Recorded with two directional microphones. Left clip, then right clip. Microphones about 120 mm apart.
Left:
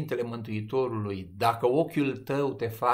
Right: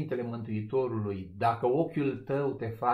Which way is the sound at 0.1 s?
20° left (ahead or behind).